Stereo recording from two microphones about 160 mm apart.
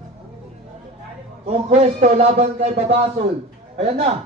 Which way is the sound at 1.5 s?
45° right (ahead or behind).